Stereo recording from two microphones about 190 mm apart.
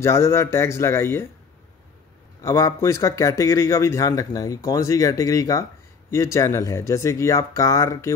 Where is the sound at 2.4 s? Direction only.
15° left (ahead or behind).